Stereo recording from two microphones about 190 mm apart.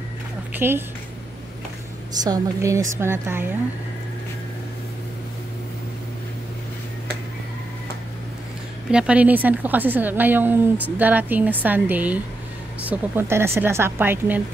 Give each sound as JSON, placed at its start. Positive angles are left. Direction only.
{"t": 0.5, "sound": "speech", "side_deg": -10}
{"t": 2.2, "sound": "a woman's voice", "side_deg": -20}
{"t": 8.9, "sound": "a woman's voice", "side_deg": -5}